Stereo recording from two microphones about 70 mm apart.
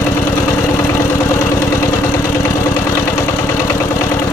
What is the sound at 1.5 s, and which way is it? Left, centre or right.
Vehicle, left.